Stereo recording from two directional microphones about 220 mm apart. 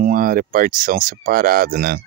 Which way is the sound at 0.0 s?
40° right (ahead or behind).